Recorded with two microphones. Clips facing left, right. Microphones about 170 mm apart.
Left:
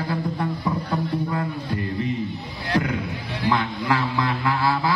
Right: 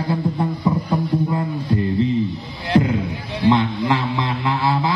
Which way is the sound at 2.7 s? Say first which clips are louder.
Right 6 dB; 25° right (ahead or behind).